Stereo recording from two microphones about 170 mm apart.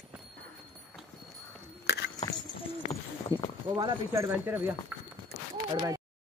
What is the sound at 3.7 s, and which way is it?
Speech, 20° right (ahead or behind).